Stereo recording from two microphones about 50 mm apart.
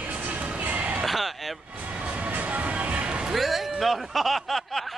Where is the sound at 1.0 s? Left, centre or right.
Centre.